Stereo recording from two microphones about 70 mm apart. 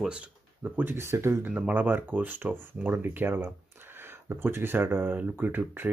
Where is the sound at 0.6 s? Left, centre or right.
Right.